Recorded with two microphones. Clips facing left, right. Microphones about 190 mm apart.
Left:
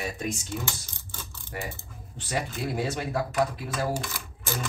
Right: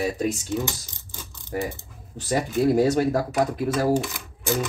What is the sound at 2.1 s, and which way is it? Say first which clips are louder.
Speech: right 8 dB; 40° right (ahead or behind).